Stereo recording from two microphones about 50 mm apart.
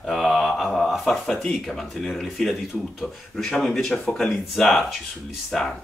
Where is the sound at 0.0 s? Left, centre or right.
Centre.